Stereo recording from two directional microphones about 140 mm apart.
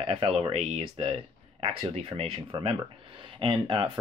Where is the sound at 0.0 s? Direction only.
45° right (ahead or behind).